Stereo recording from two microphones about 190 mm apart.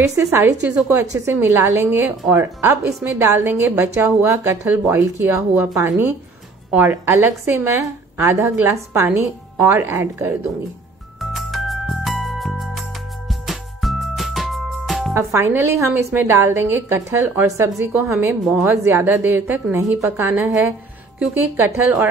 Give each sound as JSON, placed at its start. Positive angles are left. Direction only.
{"t": 0.0, "sound": "a woman's voice", "side_deg": -15}
{"t": 11.1, "sound": "music", "side_deg": 0}
{"t": 15.1, "sound": "a woman's voice", "side_deg": -15}